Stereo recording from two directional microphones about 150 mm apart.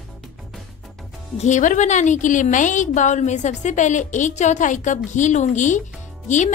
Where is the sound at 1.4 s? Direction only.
55° left (ahead or behind).